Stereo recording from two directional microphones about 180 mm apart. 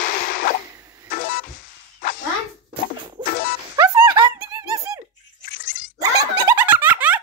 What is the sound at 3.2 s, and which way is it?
Music, 25° right (ahead or behind).